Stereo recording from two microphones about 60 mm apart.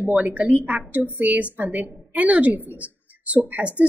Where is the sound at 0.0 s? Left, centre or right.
Right.